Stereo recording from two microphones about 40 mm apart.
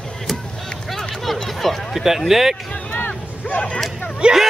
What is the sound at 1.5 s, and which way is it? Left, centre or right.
Speech, centre.